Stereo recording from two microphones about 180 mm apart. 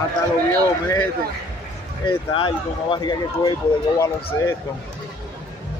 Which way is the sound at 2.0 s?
30° left (ahead or behind).